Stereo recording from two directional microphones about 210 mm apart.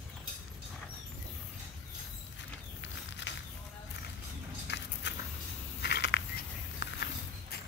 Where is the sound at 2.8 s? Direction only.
60° left (ahead or behind).